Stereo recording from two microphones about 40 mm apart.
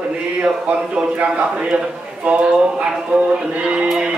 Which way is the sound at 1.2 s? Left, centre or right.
Right.